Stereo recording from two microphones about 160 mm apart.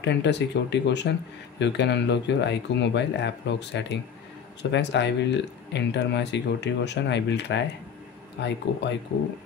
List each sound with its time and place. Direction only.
0.0 s speech: 90° left